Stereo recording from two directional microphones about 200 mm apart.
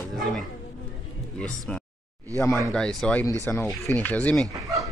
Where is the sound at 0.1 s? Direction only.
Centre (ahead or behind).